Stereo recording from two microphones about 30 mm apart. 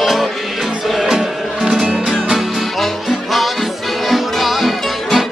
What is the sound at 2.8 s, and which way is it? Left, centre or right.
Music, centre.